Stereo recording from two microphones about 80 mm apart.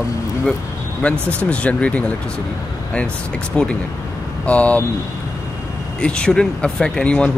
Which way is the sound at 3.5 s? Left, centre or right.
Centre.